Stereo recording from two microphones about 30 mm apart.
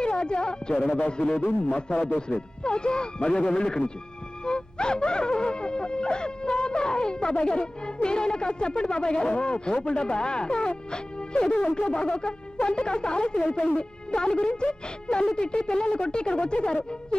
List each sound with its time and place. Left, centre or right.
0.0 s speech: left
1.1 s music: left
2.6 s speech: left
4.5 s music: left
10.9 s speech: left
11.9 s music: left